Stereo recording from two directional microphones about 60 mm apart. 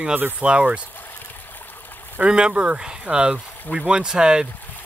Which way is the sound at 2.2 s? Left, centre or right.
Centre.